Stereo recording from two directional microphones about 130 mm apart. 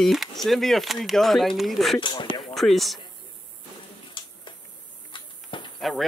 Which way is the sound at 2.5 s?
Centre (ahead or behind).